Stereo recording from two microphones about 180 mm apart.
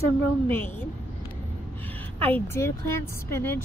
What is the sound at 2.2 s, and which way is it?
A woman's voice, 10° left (ahead or behind).